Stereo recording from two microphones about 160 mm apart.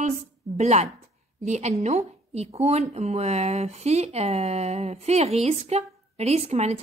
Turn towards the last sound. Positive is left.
turn(degrees=-40)  # may be behind; listen again after turning